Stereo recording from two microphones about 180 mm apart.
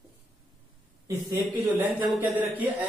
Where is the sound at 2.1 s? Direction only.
10° right (ahead or behind).